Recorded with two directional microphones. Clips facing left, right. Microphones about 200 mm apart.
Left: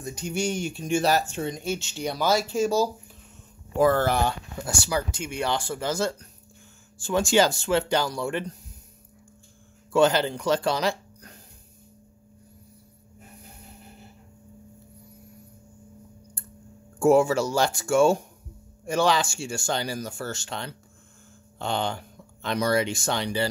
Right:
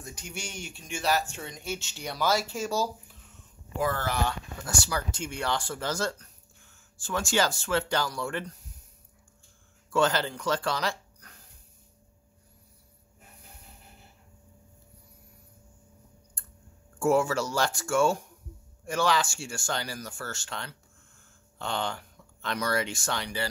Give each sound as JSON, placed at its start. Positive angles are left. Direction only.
{"t": 0.0, "sound": "speech", "side_deg": 30}
{"t": 4.8, "sound": "speech", "side_deg": 15}
{"t": 9.9, "sound": "speech", "side_deg": 15}
{"t": 17.0, "sound": "speech", "side_deg": 15}
{"t": 17.9, "sound": "speech", "side_deg": 25}